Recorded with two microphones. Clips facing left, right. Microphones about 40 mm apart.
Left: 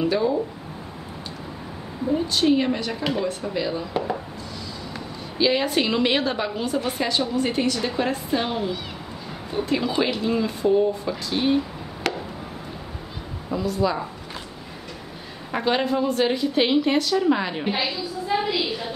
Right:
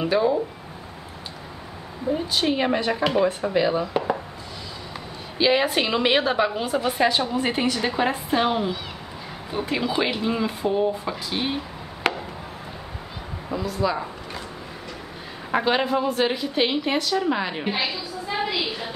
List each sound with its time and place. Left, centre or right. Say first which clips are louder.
0.0 s a woman's voice: right 1 dB; centre
2.1 s a woman's voice: left 4 dB; centre
5.4 s a woman's voice: right 1 dB; centre
13.5 s a woman's voice: left 2 dB; centre
15.5 s a woman's voice: right 1 dB; centre